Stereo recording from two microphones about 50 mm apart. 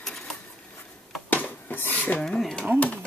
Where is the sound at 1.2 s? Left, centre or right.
Left.